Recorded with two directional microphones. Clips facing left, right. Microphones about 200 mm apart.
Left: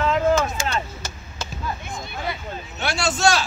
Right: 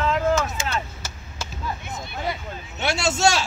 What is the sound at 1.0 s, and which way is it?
Chop, 5° right (ahead or behind).